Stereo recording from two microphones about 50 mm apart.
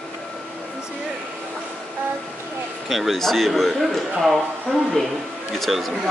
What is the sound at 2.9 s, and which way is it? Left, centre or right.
A man's voice, centre.